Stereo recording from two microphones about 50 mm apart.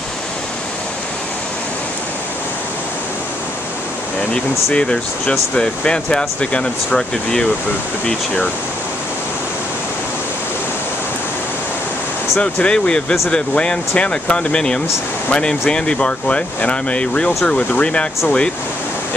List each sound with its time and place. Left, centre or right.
4.7 s speech: left
12.4 s speech: left